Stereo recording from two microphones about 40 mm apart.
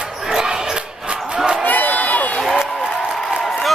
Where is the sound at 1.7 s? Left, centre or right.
Left.